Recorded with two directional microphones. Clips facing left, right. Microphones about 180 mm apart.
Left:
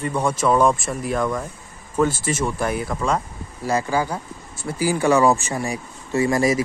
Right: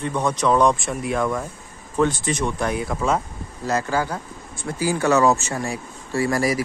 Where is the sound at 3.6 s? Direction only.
10° left (ahead or behind).